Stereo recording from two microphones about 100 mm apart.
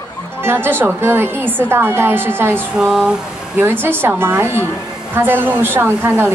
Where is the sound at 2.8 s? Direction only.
5° right (ahead or behind).